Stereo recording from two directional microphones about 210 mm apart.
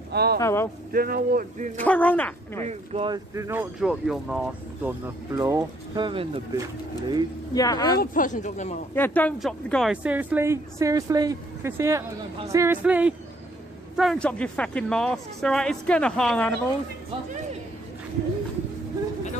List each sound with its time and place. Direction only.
0.1 s speech: 50° right (ahead or behind)
0.4 s speech: 10° left (ahead or behind)
0.9 s speech: 45° right (ahead or behind)
1.9 s speech: 5° left (ahead or behind)
2.6 s speech: 30° right (ahead or behind)
3.3 s a woman's voice: 15° right (ahead or behind)
3.8 s speech: centre (ahead or behind)
4.8 s a woman's voice: 15° right (ahead or behind)
7.5 s speech: 15° left (ahead or behind)
7.9 s speech: 45° left (ahead or behind)
8.9 s a woman's voice: 10° left (ahead or behind)